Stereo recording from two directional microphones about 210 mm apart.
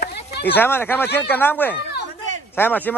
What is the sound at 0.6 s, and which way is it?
A man's voice, 10° left (ahead or behind).